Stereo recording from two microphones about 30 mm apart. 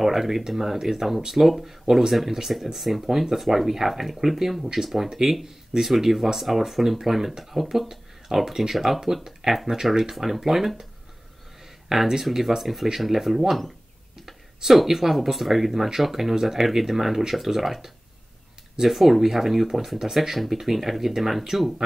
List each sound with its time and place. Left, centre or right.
0.0 s speech: centre
9.0 s speech: centre
10.1 s speech: centre
12.1 s speech: centre
14.2 s a sound: centre
14.9 s speech: centre
18.9 s speech: centre